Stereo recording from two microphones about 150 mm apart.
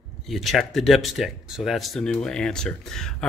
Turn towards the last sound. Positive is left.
turn(degrees=5)  # may be behind; listen again after turning